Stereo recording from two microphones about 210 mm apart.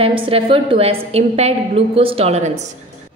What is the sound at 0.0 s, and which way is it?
A woman's voice, 25° right (ahead or behind).